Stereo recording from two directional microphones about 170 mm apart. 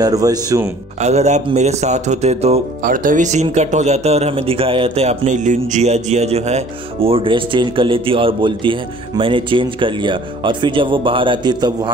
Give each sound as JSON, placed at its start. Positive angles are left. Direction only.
{"t": 0.0, "sound": "speech", "side_deg": -20}
{"t": 1.0, "sound": "speech", "side_deg": -40}
{"t": 2.8, "sound": "speech", "side_deg": -55}